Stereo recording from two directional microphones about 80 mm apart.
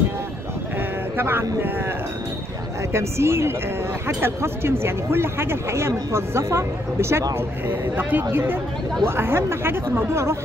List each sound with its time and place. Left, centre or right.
1.1 s speech: right
2.9 s speech: right